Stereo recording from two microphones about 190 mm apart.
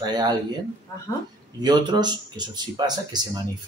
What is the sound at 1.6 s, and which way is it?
Speech, 25° right (ahead or behind).